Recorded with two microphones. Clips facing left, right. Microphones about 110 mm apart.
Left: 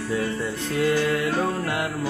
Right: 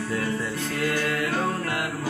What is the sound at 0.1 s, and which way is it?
Music, 15° left (ahead or behind).